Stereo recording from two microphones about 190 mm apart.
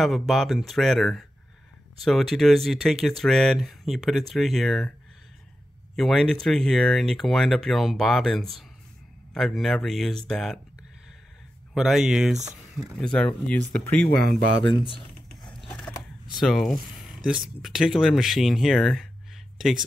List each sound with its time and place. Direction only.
0.0 s speech: centre (ahead or behind)
5.9 s speech: centre (ahead or behind)
11.7 s speech: centre (ahead or behind)
14.2 s speech: 50° right (ahead or behind)
14.7 s speech: 25° left (ahead or behind)
15.4 s a sound: 25° left (ahead or behind)
16.3 s speech: centre (ahead or behind)